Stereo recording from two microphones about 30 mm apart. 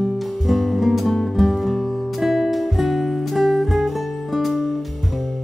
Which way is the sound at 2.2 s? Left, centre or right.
Centre.